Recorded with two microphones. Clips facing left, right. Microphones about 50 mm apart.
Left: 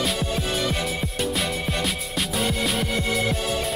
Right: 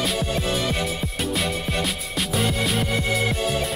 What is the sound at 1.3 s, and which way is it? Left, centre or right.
Music, centre.